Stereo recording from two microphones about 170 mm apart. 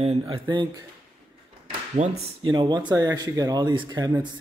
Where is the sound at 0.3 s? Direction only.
30° right (ahead or behind).